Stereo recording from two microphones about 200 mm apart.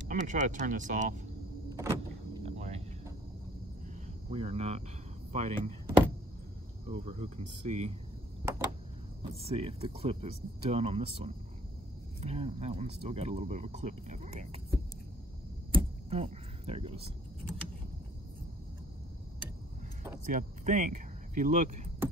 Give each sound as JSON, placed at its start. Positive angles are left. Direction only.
{"t": 0.1, "sound": "speech", "side_deg": -40}
{"t": 1.7, "sound": "power windows", "side_deg": -20}
{"t": 2.4, "sound": "cricket", "side_deg": -35}
{"t": 4.3, "sound": "speech", "side_deg": -30}
{"t": 6.9, "sound": "speech", "side_deg": -30}
{"t": 8.4, "sound": "a sound", "side_deg": -15}
{"t": 9.2, "sound": "speech", "side_deg": -30}
{"t": 15.7, "sound": "a sound", "side_deg": -30}
{"t": 20.2, "sound": "speech", "side_deg": -40}